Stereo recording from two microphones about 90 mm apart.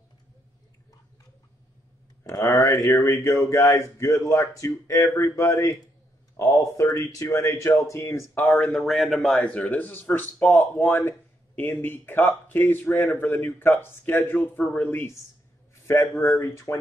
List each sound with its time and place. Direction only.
2.2 s speech: 40° left (ahead or behind)
8.6 s speech: centre (ahead or behind); by 16.7 s 35° left (ahead or behind)